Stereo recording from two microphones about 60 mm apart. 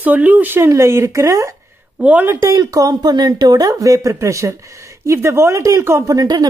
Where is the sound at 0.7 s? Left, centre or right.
Right.